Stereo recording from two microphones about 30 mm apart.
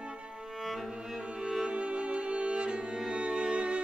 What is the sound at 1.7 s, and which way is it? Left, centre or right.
Music, right.